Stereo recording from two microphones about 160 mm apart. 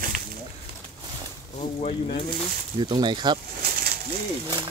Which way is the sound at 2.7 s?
30° right (ahead or behind).